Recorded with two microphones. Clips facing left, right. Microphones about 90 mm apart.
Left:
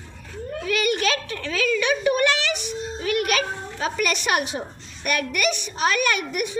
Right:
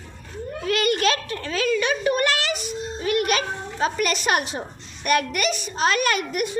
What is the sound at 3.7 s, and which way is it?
A child's voice, 35° right (ahead or behind).